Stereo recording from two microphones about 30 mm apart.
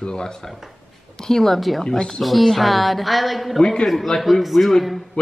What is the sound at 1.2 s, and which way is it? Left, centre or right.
A woman's voice, centre.